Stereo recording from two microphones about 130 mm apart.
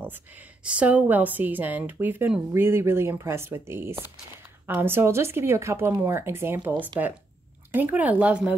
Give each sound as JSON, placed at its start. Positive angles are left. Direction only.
{"t": 0.0, "sound": "a woman's voice", "side_deg": -15}